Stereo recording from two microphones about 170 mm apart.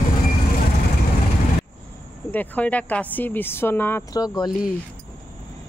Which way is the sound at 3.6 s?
15° left (ahead or behind).